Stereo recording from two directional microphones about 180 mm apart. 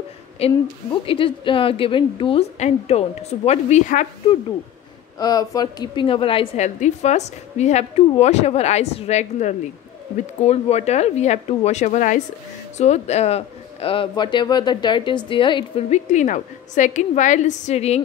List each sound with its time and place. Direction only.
0.4 s a woman's voice: 35° left (ahead or behind)
5.2 s a woman's voice: 20° left (ahead or behind)
16.1 s a woman's voice: 45° left (ahead or behind)